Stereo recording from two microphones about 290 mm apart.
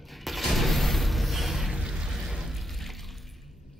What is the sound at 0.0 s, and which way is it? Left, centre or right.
Mechanisms, centre.